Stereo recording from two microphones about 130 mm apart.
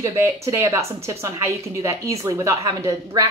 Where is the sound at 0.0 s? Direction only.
25° right (ahead or behind).